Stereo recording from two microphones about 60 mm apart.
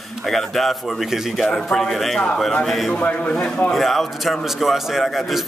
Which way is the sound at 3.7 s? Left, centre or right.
Centre.